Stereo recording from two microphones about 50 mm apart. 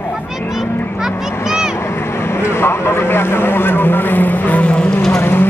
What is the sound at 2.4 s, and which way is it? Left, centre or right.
Speech, left.